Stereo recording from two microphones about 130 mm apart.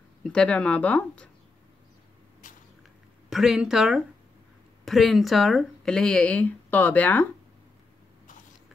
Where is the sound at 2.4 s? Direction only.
90° left.